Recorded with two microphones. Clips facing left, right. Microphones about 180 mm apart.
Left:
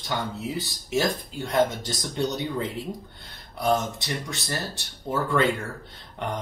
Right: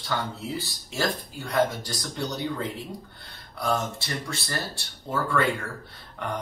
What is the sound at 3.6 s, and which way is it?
Speech, 20° left (ahead or behind).